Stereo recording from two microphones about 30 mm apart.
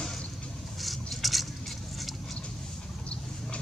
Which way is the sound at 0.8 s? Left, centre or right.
Centre.